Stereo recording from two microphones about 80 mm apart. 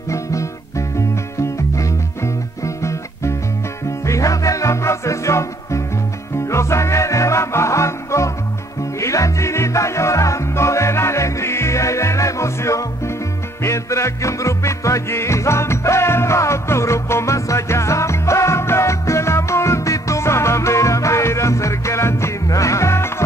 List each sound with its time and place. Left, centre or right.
0.1 s music: left